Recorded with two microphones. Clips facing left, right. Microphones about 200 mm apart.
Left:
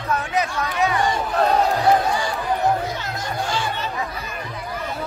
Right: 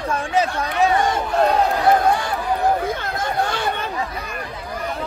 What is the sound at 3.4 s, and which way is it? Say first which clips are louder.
Chatter: right 2 dB; 55° right (ahead or behind).